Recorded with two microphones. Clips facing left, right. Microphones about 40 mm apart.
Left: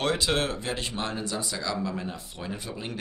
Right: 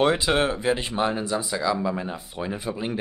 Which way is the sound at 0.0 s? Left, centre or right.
Centre.